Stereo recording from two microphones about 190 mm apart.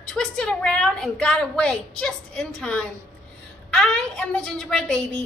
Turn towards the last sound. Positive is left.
turn(degrees=5)  # may be behind; listen again after turning